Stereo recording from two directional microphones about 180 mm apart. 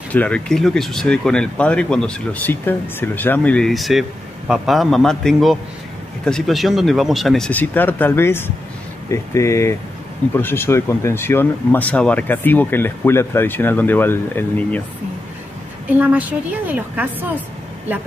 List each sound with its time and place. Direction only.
0.1 s speech: 5° left (ahead or behind)
16.0 s a woman's voice: 10° right (ahead or behind)